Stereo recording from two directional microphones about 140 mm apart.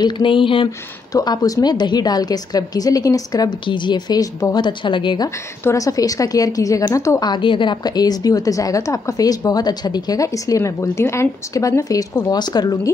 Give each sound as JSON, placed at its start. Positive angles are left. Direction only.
{"t": 0.0, "sound": "a woman's voice", "side_deg": 35}
{"t": 5.6, "sound": "a woman's voice", "side_deg": 20}